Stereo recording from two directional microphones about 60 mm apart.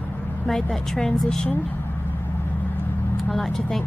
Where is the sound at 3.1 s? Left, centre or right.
Centre.